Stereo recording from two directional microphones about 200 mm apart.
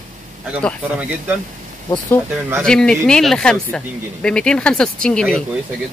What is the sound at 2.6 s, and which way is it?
Speech, 5° left (ahead or behind).